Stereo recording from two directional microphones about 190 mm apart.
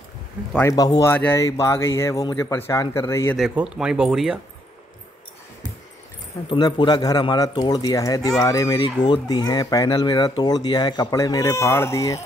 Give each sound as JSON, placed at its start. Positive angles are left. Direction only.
{"t": 0.5, "sound": "speech", "side_deg": 15}
{"t": 3.3, "sound": "speech", "side_deg": -5}
{"t": 6.5, "sound": "speech", "side_deg": 25}